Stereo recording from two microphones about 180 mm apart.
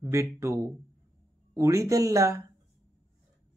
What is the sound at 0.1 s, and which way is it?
Speech, 15° right (ahead or behind).